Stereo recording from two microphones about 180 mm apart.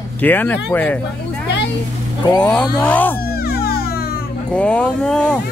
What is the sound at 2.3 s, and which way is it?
Speech, 5° left (ahead or behind).